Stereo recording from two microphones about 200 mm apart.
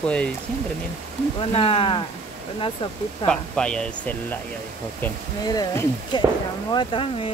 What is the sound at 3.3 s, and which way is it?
Speech, 5° left (ahead or behind).